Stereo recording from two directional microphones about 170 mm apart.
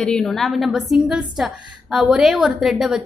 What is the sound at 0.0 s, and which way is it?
A woman's voice, 5° left (ahead or behind).